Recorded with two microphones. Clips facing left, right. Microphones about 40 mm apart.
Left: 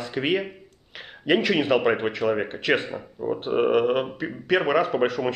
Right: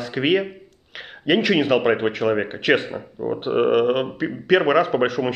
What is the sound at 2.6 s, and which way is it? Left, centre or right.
A man's voice, centre.